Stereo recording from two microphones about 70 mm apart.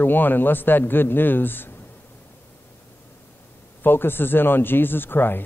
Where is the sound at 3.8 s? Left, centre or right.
Left.